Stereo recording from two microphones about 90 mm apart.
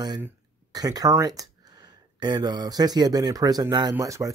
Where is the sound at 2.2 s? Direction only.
55° right (ahead or behind).